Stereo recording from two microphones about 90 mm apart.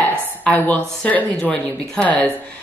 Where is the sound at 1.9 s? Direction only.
15° left (ahead or behind).